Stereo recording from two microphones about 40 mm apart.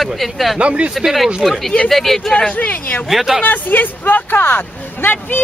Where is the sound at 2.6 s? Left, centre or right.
Left.